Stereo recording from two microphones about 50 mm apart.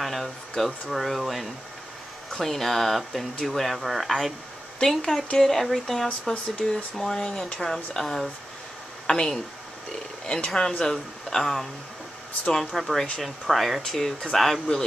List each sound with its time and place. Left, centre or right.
0.0 s speech: centre